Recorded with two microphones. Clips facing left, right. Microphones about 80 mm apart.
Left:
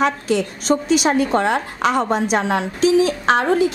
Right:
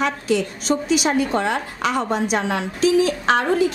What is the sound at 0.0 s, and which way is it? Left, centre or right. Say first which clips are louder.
A woman's voice: left 2 dB; left.